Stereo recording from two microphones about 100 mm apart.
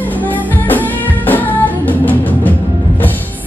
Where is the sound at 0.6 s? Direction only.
20° left (ahead or behind).